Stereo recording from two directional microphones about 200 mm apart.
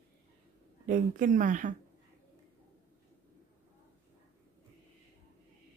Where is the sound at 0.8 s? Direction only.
40° right (ahead or behind).